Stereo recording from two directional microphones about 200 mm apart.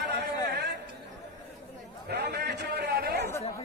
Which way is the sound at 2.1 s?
55° right (ahead or behind).